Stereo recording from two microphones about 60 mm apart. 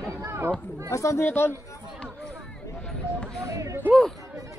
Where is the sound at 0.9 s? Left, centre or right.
Left.